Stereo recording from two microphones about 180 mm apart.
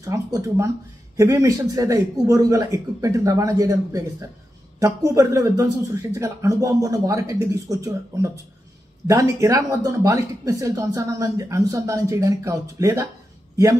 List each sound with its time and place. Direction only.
0.0 s speech: 20° right (ahead or behind)